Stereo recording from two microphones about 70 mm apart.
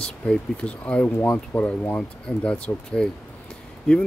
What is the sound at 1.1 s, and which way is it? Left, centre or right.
Speech, left.